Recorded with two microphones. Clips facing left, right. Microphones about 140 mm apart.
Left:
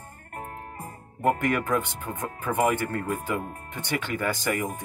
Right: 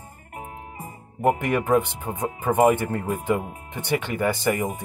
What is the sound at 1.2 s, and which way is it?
Speech, 15° right (ahead or behind).